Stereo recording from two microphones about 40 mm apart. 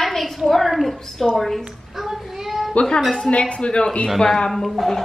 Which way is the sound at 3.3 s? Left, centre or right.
Left.